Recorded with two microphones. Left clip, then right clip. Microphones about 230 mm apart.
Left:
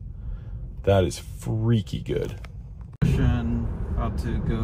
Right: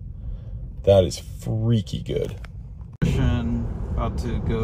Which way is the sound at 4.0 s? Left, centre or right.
Centre.